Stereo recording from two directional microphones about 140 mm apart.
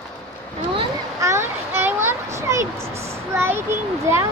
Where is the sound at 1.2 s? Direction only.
20° right (ahead or behind).